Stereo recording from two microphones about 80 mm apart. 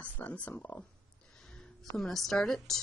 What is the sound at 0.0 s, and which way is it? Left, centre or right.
Speech, left.